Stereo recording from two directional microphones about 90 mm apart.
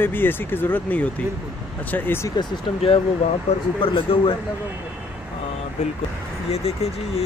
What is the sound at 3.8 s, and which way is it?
Speech, 85° left.